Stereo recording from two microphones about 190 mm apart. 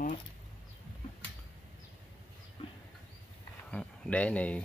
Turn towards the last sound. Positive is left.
turn(degrees=5)  # may be behind; listen again after turning